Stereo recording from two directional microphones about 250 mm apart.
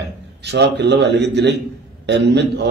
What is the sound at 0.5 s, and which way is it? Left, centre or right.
Speech, right.